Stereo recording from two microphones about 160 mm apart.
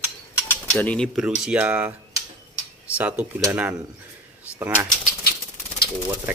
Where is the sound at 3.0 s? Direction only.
10° right (ahead or behind).